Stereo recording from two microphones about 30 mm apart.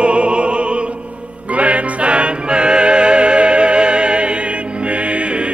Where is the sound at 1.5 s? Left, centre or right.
Right.